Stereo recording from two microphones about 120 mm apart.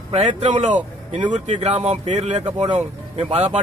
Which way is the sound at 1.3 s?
75° right (ahead or behind).